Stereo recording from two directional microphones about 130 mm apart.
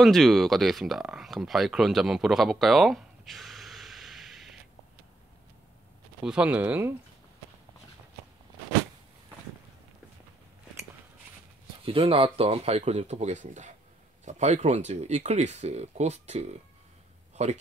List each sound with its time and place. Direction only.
0.0 s speech: centre (ahead or behind)
6.2 s speech: 10° right (ahead or behind)
11.8 s speech: 45° right (ahead or behind)